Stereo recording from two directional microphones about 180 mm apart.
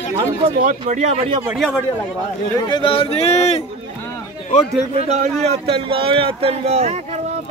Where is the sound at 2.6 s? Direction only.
25° left (ahead or behind).